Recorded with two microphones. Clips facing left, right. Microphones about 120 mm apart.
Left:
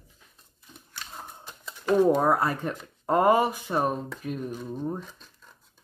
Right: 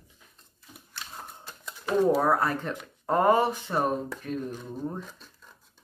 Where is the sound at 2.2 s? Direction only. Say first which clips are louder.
Left 1 dB; 10° left (ahead or behind).